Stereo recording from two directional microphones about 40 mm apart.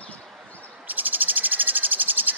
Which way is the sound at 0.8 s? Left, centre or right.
Right.